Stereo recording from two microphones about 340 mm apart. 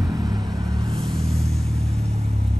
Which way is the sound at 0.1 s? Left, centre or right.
Centre.